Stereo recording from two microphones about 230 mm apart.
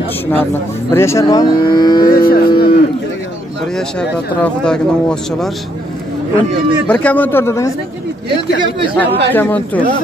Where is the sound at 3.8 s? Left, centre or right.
Centre.